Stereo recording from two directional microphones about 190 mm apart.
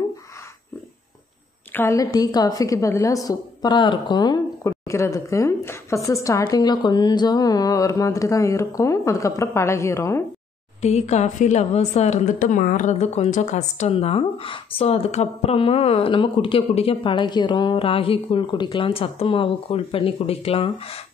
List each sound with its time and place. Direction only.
1.7 s a woman's voice: 10° left (ahead or behind)
10.8 s a woman's voice: 35° left (ahead or behind)